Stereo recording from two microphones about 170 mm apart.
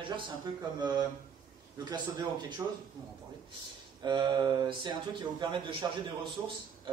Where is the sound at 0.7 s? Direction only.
25° right (ahead or behind).